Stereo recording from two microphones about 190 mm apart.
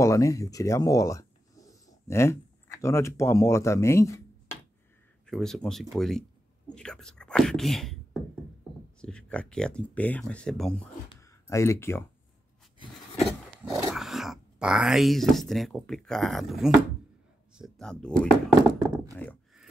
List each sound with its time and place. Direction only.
0.0 s speech: 15° left (ahead or behind)
5.2 s speech: 5° left (ahead or behind)
11.1 s a sound: 15° left (ahead or behind)
13.7 s speech: centre (ahead or behind)